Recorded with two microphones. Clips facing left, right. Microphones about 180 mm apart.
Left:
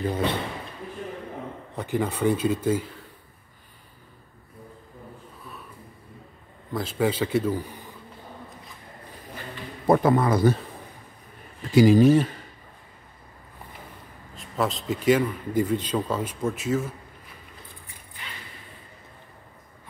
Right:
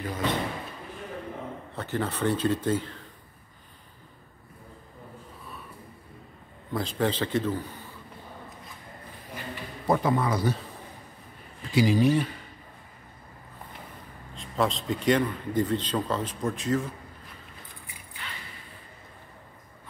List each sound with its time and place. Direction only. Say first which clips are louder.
0.0 s speech: left 5 dB; 30° left (ahead or behind)
1.8 s speech: left 4 dB; 15° left (ahead or behind)
6.7 s speech: left 2 dB; 5° left (ahead or behind)
9.8 s a man's voice: left 5 dB; 50° left (ahead or behind)
11.7 s a man's voice: left 6 dB; 45° left (ahead or behind)
14.3 s a man's voice: even; centre (ahead or behind)